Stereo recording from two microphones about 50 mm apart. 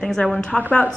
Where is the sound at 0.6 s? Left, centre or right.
Left.